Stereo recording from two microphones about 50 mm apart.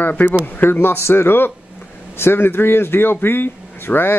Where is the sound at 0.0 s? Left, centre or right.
Left.